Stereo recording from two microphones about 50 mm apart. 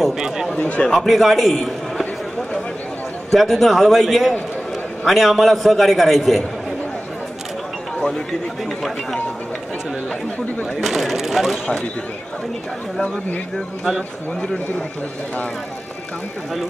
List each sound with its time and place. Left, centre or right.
0.0 s speech: centre
0.6 s speech: left
0.8 s a man's voice: centre
3.3 s a man's voice: centre
10.8 s a man's voice: centre